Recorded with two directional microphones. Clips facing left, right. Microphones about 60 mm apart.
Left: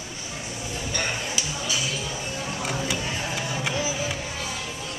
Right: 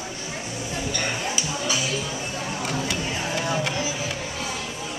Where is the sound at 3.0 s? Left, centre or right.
Centre.